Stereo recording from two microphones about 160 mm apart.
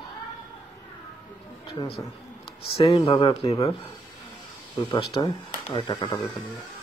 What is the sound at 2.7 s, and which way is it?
Speech, 35° left (ahead or behind).